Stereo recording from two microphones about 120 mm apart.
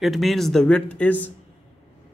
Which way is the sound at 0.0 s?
Centre (ahead or behind).